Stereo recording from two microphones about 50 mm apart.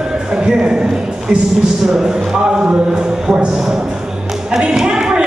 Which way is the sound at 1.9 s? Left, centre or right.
Centre.